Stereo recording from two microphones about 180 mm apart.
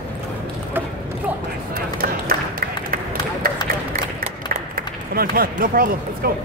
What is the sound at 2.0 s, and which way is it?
Run, 55° right (ahead or behind).